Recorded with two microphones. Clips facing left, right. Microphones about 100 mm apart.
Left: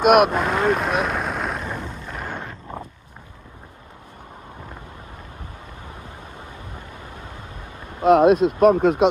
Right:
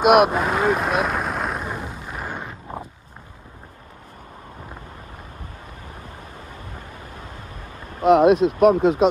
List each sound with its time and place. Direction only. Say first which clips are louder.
0.0 s speech: even; 55° left (ahead or behind)
0.3 s vehicle: even; 5° right (ahead or behind)
1.9 s a sound: even; 15° right (ahead or behind)
6.7 s vehicle: even; 20° left (ahead or behind)
8.0 s a sound: even; centre (ahead or behind)
8.5 s speech: even; 5° right (ahead or behind)
8.7 s speech: even; 50° left (ahead or behind)